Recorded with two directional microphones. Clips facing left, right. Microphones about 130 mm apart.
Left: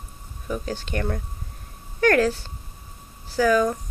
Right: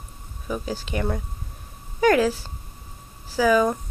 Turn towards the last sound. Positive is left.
turn(degrees=-10)  # may be behind; listen again after turning